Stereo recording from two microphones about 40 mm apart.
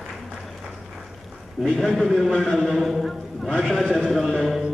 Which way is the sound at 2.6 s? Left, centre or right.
Centre.